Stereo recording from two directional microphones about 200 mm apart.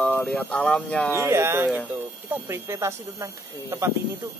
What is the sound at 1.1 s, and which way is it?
Speech, 15° right (ahead or behind).